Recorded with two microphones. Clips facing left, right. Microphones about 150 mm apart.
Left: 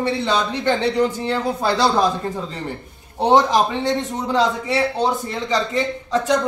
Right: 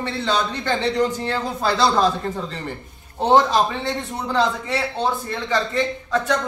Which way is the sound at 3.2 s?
15° left (ahead or behind).